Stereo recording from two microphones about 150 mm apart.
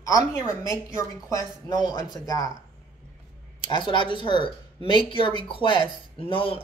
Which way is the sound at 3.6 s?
35° left (ahead or behind).